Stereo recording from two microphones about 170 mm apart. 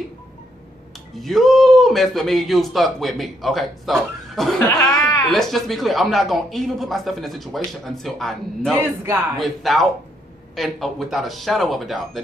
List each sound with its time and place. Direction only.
1.1 s a man's voice: centre (ahead or behind)
5.3 s a man's voice: centre (ahead or behind)
9.0 s speech: 15° right (ahead or behind)
9.4 s a man's voice: centre (ahead or behind)